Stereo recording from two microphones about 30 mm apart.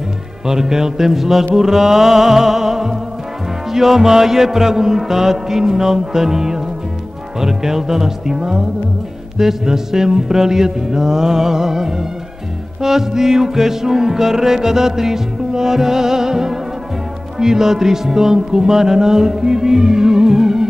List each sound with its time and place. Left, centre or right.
0.5 s music: centre